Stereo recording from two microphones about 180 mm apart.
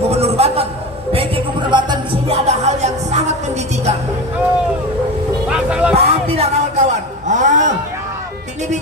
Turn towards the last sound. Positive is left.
turn(degrees=-45)  # may be behind; listen again after turning